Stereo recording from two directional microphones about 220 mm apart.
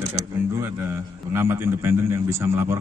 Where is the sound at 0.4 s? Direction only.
10° right (ahead or behind).